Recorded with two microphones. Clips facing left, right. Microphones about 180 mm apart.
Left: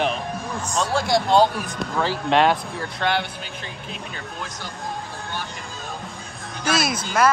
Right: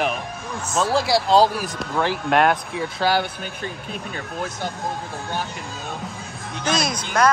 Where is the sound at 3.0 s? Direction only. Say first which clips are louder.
Right 3 dB; 45° right (ahead or behind).